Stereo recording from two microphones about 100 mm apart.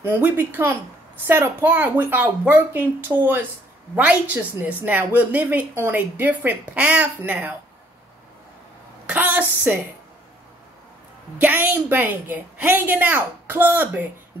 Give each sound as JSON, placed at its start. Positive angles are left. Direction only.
{"t": 0.1, "sound": "a woman's voice", "side_deg": -20}
{"t": 9.0, "sound": "speech", "side_deg": -15}
{"t": 11.3, "sound": "a woman's voice", "side_deg": -20}